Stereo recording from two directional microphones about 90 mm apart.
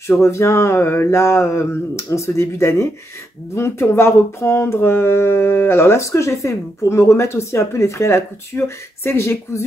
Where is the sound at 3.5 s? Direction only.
30° left (ahead or behind).